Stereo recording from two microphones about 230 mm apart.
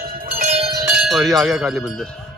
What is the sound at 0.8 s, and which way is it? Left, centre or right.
Cowbell, centre.